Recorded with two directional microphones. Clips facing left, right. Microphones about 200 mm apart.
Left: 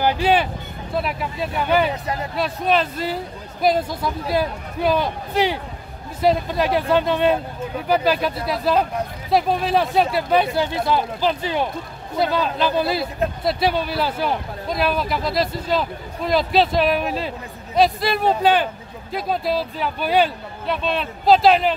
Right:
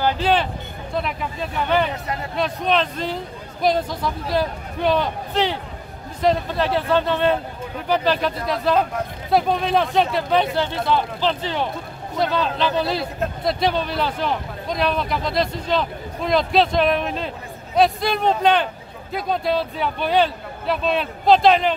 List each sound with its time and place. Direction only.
0.0 s speech: 10° left (ahead or behind)